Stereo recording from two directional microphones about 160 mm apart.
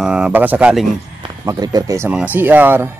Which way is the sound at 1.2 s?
25° right (ahead or behind).